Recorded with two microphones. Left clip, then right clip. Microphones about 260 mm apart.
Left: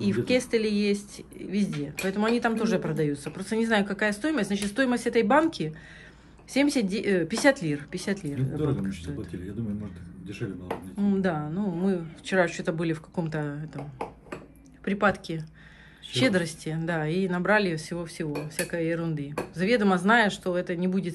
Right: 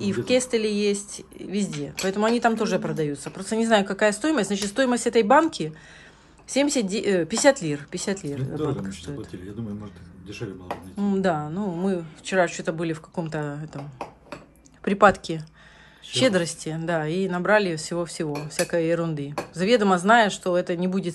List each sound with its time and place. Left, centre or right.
0.0 s speech: centre
10.4 s speech: centre